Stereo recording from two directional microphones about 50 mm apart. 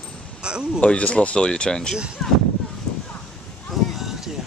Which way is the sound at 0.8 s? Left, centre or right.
Left.